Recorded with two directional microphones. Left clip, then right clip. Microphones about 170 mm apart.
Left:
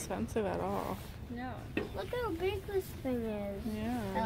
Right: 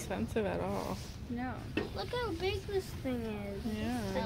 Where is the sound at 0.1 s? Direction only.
10° left (ahead or behind).